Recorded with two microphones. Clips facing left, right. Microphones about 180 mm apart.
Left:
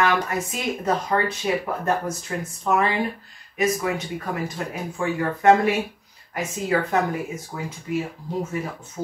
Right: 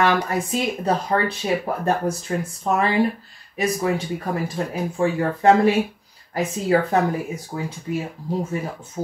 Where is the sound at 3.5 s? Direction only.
30° right (ahead or behind).